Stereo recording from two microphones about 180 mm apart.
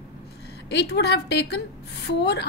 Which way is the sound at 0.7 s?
70° left (ahead or behind).